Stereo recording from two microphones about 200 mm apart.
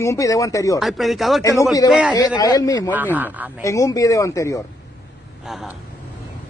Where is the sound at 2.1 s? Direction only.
20° left (ahead or behind).